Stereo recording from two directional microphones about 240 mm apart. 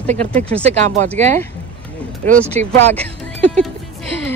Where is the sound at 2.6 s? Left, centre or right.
Right.